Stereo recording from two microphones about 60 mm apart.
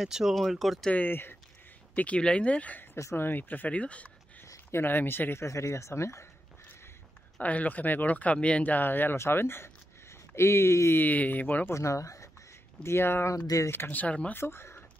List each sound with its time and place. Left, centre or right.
0.0 s speech: centre
0.9 s speech: left
2.0 s speech: centre
4.6 s speech: left
5.4 s speech: left
7.4 s speech: left
11.0 s speech: left
11.7 s speech: left
12.8 s speech: left
13.3 s speech: left
13.8 s speech: left
14.3 s speech: left